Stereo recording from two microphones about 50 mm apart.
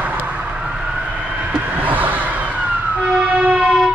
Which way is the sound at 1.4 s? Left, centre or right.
Right.